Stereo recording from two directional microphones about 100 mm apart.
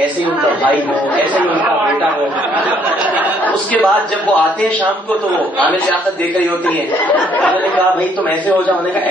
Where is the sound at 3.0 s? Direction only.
15° right (ahead or behind).